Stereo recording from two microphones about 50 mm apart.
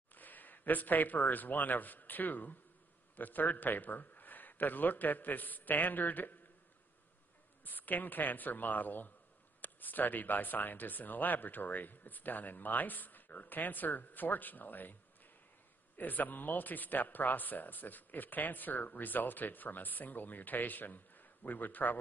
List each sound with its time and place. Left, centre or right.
0.1 s speech: left
7.6 s speech: left
16.0 s speech: left